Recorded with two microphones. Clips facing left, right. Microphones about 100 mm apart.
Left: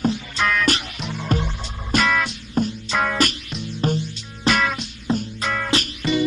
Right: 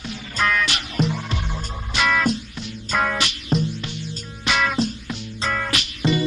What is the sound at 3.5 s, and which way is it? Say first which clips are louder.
Music: right 10 dB; 40° right (ahead or behind).